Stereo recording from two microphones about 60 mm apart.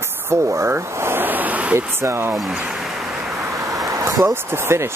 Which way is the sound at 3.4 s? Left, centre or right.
Right.